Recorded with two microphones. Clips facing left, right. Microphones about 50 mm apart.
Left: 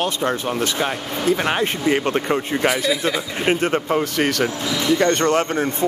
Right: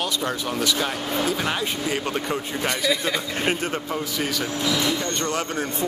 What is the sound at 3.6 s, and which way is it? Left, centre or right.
Speech, left.